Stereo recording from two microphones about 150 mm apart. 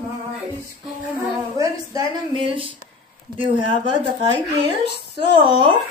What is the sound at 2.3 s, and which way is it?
Speech, 35° right (ahead or behind).